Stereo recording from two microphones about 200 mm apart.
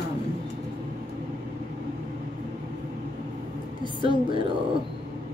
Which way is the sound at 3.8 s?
25° right (ahead or behind).